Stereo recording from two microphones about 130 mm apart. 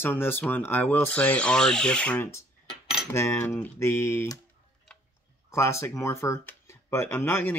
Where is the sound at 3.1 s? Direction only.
20° left (ahead or behind).